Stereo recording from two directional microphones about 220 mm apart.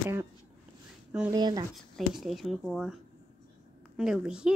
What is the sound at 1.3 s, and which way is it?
Speech, 20° right (ahead or behind).